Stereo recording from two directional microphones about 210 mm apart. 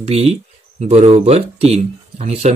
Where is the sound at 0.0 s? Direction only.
30° right (ahead or behind).